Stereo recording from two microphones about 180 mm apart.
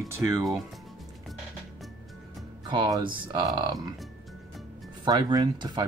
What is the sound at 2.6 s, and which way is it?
Speech, 25° right (ahead or behind).